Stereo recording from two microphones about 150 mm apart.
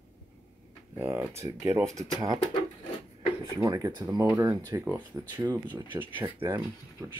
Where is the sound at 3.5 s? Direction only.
25° right (ahead or behind).